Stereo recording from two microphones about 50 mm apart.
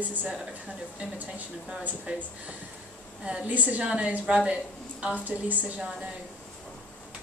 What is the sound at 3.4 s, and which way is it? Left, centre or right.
A woman's voice, right.